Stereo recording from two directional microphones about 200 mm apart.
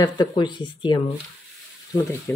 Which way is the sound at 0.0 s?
20° left (ahead or behind).